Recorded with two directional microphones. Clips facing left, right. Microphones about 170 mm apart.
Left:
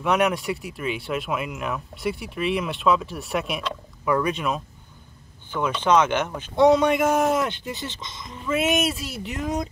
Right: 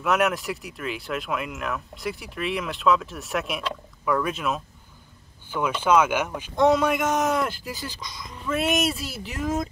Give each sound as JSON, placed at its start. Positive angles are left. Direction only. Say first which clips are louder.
{"t": 0.0, "sound": "speech", "louder": "left 1 dB", "side_deg": 0}
{"t": 7.8, "sound": "speech", "louder": "left 1 dB", "side_deg": 25}
{"t": 8.3, "sound": "speech", "louder": "left 2 dB", "side_deg": 0}